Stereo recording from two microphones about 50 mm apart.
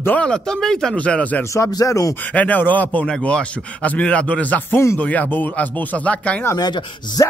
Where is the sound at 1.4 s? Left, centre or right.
Left.